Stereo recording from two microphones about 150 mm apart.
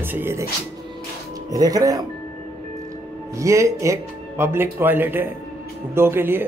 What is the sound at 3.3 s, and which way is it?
A man's voice, 20° right (ahead or behind).